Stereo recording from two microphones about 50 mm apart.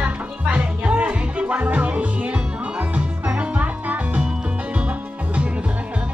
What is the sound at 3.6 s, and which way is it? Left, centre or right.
Music, right.